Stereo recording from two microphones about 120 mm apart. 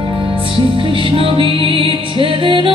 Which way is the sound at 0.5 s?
45° right (ahead or behind).